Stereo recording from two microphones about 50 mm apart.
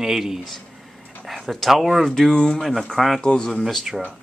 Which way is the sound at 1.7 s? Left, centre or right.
Centre.